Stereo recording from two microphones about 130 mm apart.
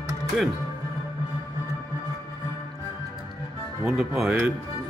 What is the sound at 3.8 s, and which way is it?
Speech, 5° right (ahead or behind).